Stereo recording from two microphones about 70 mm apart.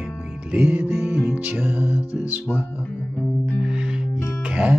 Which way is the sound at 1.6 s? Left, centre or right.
Right.